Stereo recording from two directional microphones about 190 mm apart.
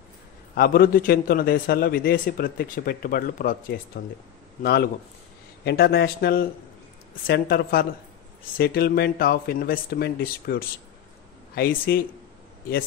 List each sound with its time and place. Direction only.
0.6 s a man's voice: 50° left (ahead or behind)
5.6 s a man's voice: 55° left (ahead or behind)